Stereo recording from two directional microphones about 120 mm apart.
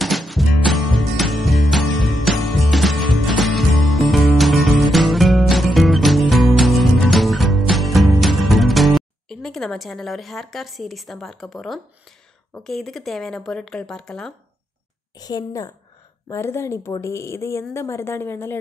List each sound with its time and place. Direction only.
0.0 s music: centre (ahead or behind)
12.5 s speech: 5° left (ahead or behind)
15.1 s a woman's voice: 35° left (ahead or behind)
16.3 s a woman's voice: 20° left (ahead or behind)